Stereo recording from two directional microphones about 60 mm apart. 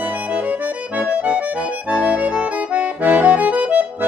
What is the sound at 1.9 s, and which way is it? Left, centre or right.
Accordion, right.